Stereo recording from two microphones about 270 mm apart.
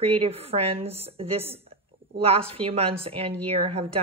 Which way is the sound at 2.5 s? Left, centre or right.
Right.